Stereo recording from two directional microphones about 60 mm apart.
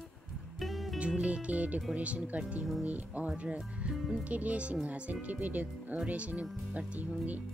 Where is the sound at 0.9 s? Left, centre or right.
Centre.